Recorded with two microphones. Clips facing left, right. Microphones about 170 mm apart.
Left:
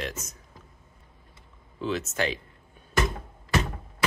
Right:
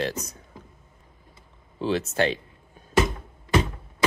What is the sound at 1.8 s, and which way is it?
Speech, 30° right (ahead or behind).